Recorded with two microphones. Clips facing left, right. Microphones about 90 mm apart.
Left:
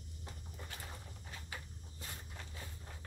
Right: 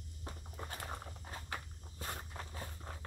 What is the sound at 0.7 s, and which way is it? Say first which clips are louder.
Dog: right 8 dB; 55° right (ahead or behind).